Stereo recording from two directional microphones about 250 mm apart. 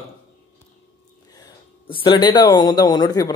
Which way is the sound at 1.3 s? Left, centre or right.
Centre.